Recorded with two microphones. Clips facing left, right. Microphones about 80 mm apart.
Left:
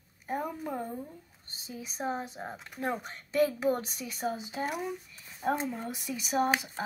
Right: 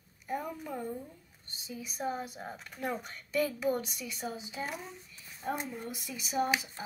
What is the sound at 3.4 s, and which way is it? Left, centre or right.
A woman's voice, left.